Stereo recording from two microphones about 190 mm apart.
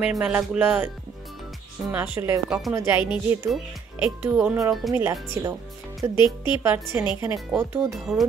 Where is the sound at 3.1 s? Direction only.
Centre (ahead or behind).